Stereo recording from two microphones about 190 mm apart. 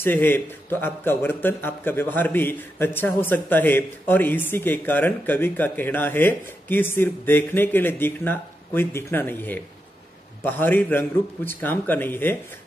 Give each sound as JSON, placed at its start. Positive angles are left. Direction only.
{"t": 0.0, "sound": "a man's voice", "side_deg": 10}